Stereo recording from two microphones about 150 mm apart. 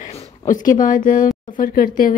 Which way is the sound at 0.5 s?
60° left (ahead or behind).